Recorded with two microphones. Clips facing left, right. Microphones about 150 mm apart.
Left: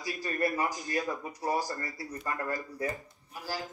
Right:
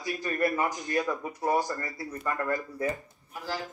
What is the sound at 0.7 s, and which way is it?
Speech, 20° right (ahead or behind).